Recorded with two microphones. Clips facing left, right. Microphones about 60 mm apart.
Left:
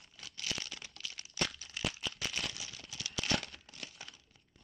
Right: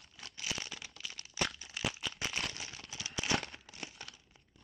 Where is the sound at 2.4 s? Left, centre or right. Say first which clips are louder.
Right 1 dB; right.